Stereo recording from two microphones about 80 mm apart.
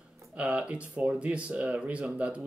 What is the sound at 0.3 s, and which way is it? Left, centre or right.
Speech, centre.